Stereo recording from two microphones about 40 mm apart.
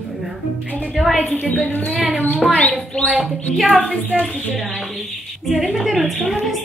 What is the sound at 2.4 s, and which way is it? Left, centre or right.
Speech, left.